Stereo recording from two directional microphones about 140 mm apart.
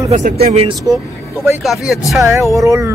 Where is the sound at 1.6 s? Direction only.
Centre (ahead or behind).